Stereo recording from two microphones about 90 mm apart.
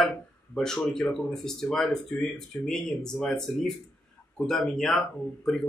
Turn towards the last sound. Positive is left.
turn(degrees=5)  # may be behind; listen again after turning